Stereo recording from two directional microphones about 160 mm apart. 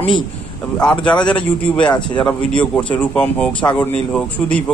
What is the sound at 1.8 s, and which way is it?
Speech, 25° left (ahead or behind).